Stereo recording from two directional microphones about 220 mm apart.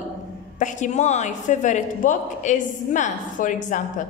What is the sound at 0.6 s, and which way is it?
A woman's voice, 35° left (ahead or behind).